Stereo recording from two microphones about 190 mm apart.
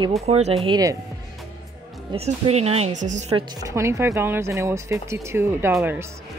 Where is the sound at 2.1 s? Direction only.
35° right (ahead or behind).